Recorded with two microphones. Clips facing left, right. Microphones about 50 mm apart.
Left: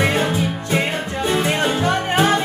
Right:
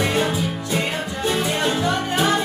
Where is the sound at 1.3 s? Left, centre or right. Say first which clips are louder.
Left 3 dB; left.